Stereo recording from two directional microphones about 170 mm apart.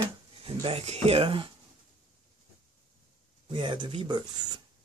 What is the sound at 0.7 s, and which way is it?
Speech, 35° right (ahead or behind).